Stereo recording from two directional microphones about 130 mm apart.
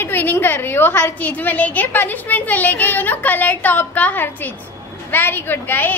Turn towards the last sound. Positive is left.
turn(degrees=15)  # may be behind; listen again after turning